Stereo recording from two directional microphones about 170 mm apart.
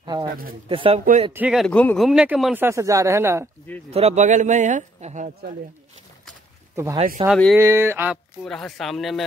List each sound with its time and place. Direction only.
0.0 s a sound: 25° right (ahead or behind)
0.7 s speech: 35° right (ahead or behind)
1.3 s speech: 5° right (ahead or behind)
1.7 s speech: 5° left (ahead or behind)
2.0 s speech: 5° right (ahead or behind)
3.9 s a man's voice: 40° right (ahead or behind)
6.7 s a sound: 15° right (ahead or behind)
7.2 s speech: 30° right (ahead or behind)
7.5 s speech: 15° right (ahead or behind)
8.5 s speech: 5° left (ahead or behind)